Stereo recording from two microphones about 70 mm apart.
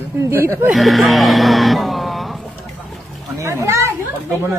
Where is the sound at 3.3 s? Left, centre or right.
Right.